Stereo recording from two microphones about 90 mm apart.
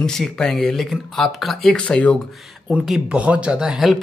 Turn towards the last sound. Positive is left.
turn(degrees=-5)  # may be behind; listen again after turning